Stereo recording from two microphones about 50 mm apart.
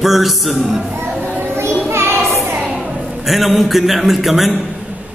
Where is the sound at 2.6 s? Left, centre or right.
Centre.